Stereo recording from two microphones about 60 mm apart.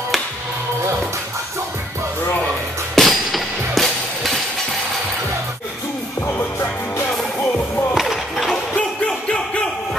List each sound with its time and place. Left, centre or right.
3.0 s music: centre
6.2 s music: left
7.9 s a sound: centre
8.7 s music: centre